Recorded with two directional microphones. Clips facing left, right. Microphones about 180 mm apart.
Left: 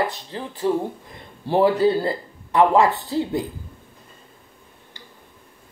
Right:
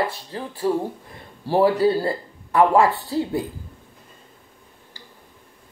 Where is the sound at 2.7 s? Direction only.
20° left (ahead or behind).